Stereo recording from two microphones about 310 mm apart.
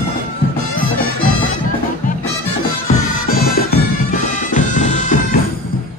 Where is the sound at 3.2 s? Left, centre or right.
Left.